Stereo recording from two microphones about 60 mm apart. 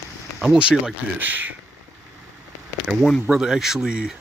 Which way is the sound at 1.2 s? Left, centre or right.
Right.